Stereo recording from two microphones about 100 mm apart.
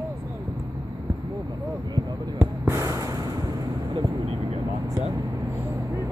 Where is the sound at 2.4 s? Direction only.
25° right (ahead or behind).